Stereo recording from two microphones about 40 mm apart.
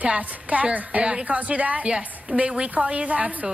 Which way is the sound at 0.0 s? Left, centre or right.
Right.